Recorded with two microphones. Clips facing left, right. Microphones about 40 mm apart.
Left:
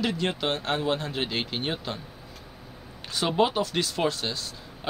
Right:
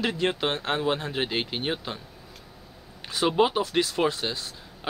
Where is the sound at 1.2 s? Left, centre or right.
Centre.